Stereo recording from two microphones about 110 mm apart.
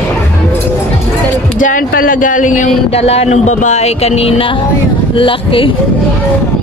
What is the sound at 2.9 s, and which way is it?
Speech, 70° left (ahead or behind).